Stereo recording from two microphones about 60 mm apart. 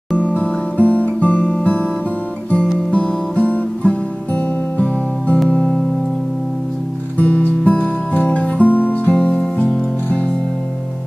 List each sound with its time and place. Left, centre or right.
0.2 s music: left
2.9 s music: centre
7.2 s music: left